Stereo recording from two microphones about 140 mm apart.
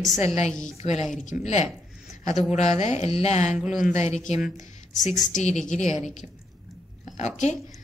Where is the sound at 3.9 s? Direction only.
55° left (ahead or behind).